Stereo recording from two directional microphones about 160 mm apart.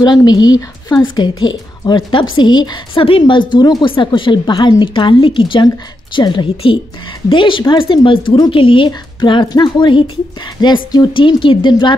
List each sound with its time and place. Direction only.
0.0 s a woman's voice: 25° left (ahead or behind)